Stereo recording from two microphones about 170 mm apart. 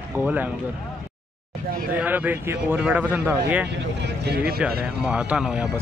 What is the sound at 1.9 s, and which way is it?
Speech, 10° right (ahead or behind).